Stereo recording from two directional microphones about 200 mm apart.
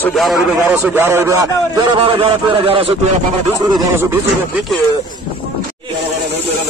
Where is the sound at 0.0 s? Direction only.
Centre (ahead or behind); by 2.9 s 25° right (ahead or behind).